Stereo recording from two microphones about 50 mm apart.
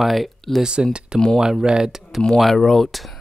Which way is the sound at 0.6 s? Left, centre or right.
Centre.